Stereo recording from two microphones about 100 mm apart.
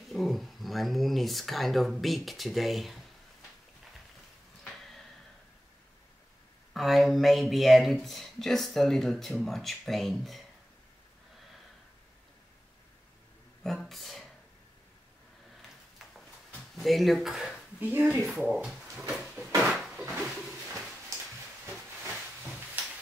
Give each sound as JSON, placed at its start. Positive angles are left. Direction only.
{"t": 0.1, "sound": "speech", "side_deg": 0}
{"t": 6.7, "sound": "speech", "side_deg": 0}
{"t": 13.7, "sound": "speech", "side_deg": 0}
{"t": 16.7, "sound": "speech", "side_deg": 0}
{"t": 17.7, "sound": "speech", "side_deg": -15}
{"t": 18.5, "sound": "a sound", "side_deg": -5}
{"t": 22.6, "sound": "a sound", "side_deg": -15}